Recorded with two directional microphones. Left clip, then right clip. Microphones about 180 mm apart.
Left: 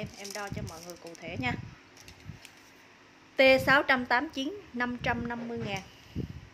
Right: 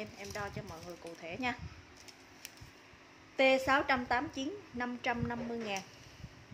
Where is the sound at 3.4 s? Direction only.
25° left (ahead or behind).